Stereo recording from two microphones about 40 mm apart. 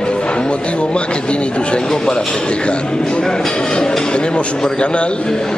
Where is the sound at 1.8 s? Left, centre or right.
Centre.